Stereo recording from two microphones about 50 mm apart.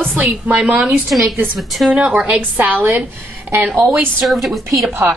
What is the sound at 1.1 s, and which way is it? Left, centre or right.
Speech, centre.